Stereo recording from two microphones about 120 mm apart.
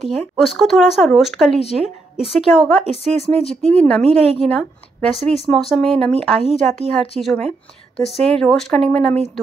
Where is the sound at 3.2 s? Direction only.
55° left (ahead or behind).